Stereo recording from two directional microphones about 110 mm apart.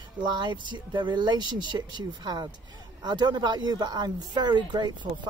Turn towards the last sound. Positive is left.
turn(degrees=-40)  # may be behind; listen again after turning